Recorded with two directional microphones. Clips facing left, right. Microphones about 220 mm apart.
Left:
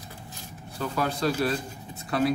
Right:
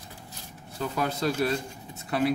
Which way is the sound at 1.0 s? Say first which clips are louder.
Left 1 dB; 20° right (ahead or behind).